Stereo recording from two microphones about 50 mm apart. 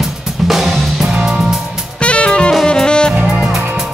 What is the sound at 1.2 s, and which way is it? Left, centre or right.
Music, centre.